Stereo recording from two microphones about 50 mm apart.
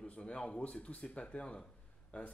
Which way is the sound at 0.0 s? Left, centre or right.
Centre.